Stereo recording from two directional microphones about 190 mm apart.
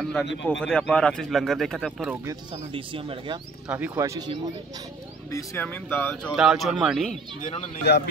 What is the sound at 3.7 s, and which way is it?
Speech, 10° right (ahead or behind).